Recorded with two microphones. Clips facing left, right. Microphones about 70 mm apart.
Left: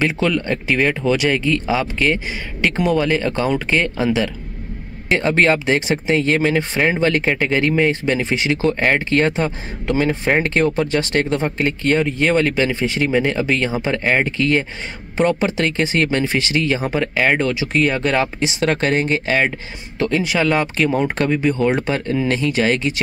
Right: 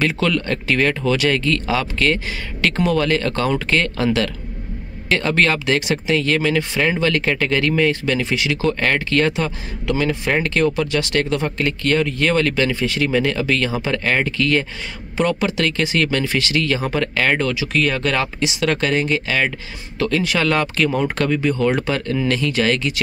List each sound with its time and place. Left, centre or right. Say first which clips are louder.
0.0 s speech: left 1 dB; centre
16.8 s speech: left 1 dB; centre